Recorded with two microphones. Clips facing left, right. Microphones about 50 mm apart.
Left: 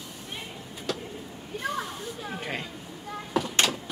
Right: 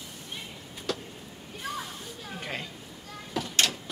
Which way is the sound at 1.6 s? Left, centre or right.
Centre.